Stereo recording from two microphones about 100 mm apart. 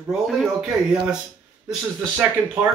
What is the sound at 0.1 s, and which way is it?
Speech, 5° right (ahead or behind).